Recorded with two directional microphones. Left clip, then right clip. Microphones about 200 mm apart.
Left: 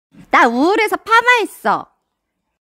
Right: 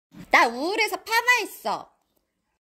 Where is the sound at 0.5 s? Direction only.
40° left (ahead or behind).